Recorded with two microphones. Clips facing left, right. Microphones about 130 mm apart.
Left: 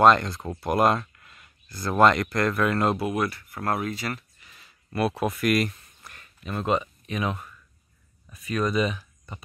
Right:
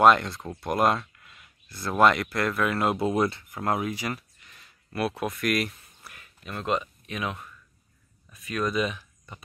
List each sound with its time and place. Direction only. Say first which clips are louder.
0.0 s speech: left 1 dB; 5° right (ahead or behind)
0.4 s speech: left 2 dB; 10° left (ahead or behind)
3.0 s speech: right 2 dB; 25° right (ahead or behind)
4.4 s a sound: left 1 dB; centre (ahead or behind)
8.3 s speech: left 2 dB; centre (ahead or behind)